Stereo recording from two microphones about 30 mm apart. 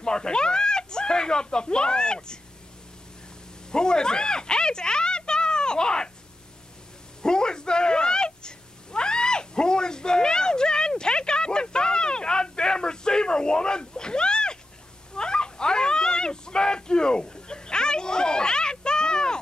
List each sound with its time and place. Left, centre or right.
0.0 s speech: left
3.7 s speech: left
7.2 s cat: left